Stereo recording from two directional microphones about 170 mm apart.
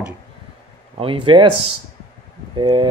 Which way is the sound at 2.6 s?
30° right (ahead or behind).